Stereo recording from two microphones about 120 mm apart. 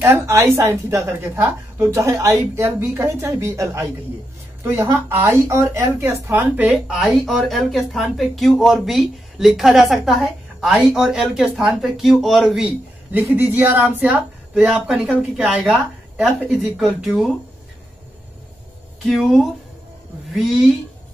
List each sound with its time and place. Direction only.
0.0 s a woman's voice: 20° right (ahead or behind)
13.2 s speech: 20° right (ahead or behind)
16.3 s speech: centre (ahead or behind)
19.0 s speech: centre (ahead or behind)